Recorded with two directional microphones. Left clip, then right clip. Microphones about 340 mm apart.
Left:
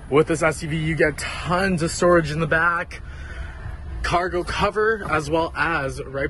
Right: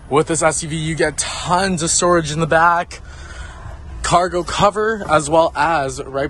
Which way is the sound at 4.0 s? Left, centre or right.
Centre.